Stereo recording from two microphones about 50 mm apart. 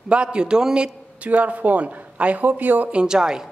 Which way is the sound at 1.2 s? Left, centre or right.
Right.